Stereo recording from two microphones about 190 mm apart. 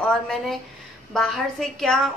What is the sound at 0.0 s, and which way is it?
A woman's voice, centre (ahead or behind).